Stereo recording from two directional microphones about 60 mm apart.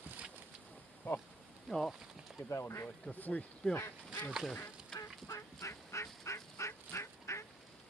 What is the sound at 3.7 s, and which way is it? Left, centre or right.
Speech, left.